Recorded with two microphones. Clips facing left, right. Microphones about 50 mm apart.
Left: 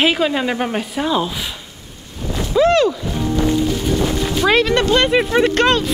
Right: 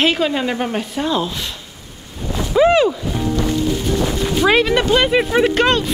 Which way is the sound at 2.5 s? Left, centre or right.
Centre.